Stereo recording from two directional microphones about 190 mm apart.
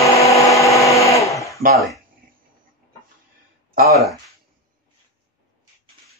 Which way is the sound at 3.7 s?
50° right (ahead or behind).